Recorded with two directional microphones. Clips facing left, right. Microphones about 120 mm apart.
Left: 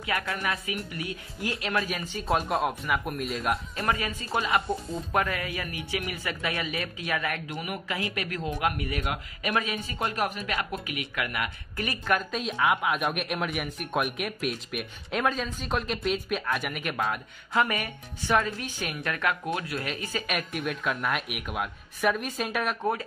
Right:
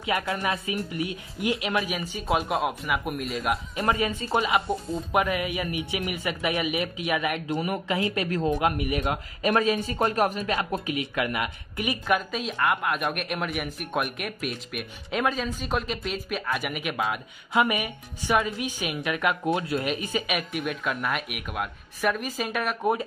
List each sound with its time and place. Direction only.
0.2 s speech: 25° right (ahead or behind)
2.0 s a woman's voice: 5° right (ahead or behind)
3.7 s speech: 20° right (ahead or behind)
7.4 s a man's voice: 30° right (ahead or behind)
10.4 s speech: 30° right (ahead or behind)
12.1 s a woman's voice: centre (ahead or behind)
20.2 s a woman's voice: 5° right (ahead or behind)